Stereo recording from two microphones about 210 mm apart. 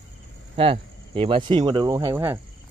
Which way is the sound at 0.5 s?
25° right (ahead or behind).